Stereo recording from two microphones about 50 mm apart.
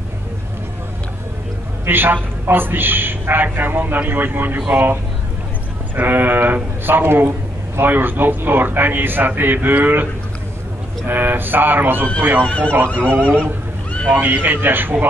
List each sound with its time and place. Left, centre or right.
1.9 s a man's voice: right
5.9 s a man's voice: right
11.1 s a man's voice: right
12.4 s speech: left
13.0 s speech: right
14.1 s a man's voice: right